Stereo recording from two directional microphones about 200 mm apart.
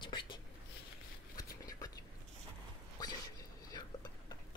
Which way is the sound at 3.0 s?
20° left (ahead or behind).